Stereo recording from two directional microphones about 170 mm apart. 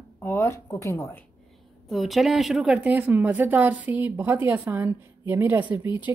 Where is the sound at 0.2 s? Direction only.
15° left (ahead or behind).